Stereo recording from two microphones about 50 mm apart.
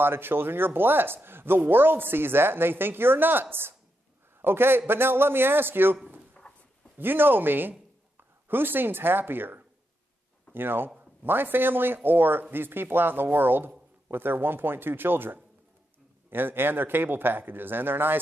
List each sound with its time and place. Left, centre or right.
0.0 s speech: right
6.4 s dog: left
7.0 s speech: right